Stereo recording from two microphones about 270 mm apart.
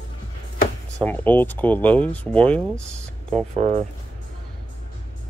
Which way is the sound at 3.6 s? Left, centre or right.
Right.